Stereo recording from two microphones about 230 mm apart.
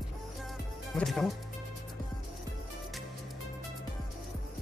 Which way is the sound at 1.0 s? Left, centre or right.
Centre.